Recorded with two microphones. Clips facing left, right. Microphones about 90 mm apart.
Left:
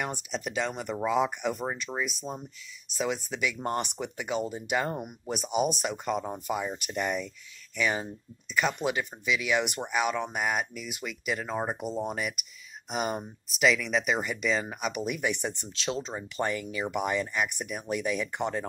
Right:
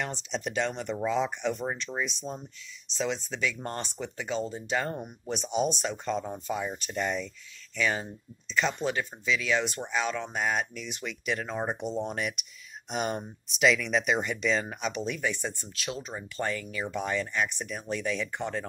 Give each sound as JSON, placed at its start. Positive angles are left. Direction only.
{"t": 0.0, "sound": "speech", "side_deg": 10}
{"t": 1.9, "sound": "speech", "side_deg": 35}
{"t": 2.3, "sound": "speech", "side_deg": 10}